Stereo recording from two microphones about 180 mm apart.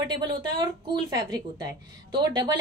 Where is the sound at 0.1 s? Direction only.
25° right (ahead or behind).